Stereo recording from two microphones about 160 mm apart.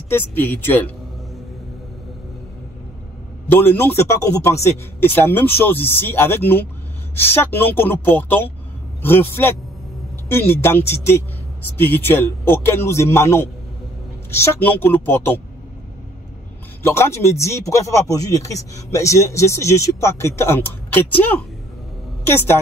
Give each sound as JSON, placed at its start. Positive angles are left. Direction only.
{"t": 0.1, "sound": "speech", "side_deg": 10}
{"t": 3.4, "sound": "speech", "side_deg": 15}
{"t": 16.8, "sound": "a woman's voice", "side_deg": 15}